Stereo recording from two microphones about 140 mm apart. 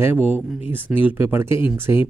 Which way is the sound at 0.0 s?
10° right (ahead or behind).